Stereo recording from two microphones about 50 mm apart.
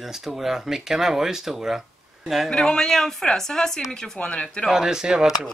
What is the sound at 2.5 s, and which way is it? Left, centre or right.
Speech, centre.